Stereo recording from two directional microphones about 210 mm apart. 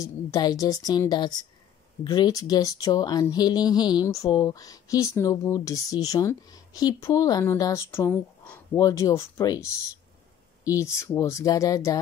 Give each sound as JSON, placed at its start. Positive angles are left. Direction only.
{"t": 0.0, "sound": "speech", "side_deg": 15}
{"t": 10.8, "sound": "speech", "side_deg": 15}